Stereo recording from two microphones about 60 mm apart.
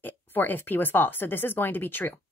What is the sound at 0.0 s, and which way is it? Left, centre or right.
Speech, left.